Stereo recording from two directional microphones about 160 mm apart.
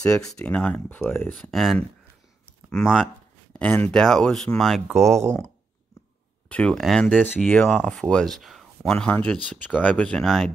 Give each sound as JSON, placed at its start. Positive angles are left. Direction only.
{"t": 0.0, "sound": "speech", "side_deg": 5}
{"t": 1.3, "sound": "speech", "side_deg": 0}
{"t": 6.5, "sound": "speech", "side_deg": 5}